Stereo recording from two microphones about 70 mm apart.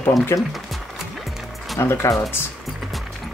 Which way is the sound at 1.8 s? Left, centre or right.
Left.